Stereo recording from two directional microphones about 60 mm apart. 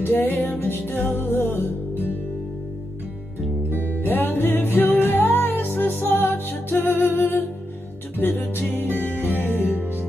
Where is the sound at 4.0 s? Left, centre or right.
Left.